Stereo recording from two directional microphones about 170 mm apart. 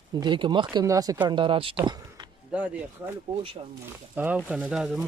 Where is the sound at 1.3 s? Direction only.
30° right (ahead or behind).